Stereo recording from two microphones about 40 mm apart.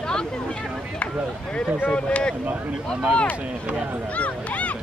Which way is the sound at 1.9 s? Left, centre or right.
Left.